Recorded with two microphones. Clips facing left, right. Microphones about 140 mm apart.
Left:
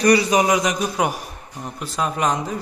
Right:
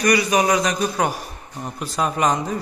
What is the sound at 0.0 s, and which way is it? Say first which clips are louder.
Speech: left 2 dB; 25° left (ahead or behind).